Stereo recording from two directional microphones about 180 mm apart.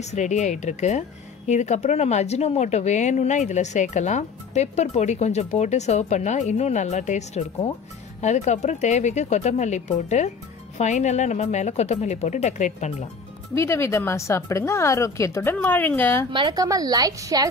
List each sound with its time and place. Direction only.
0.0 s a woman's voice: 40° left (ahead or behind)
13.6 s a woman's voice: 15° left (ahead or behind)
16.3 s a woman's voice: 25° right (ahead or behind)